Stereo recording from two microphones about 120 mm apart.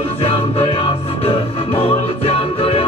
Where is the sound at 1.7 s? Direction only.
50° left (ahead or behind).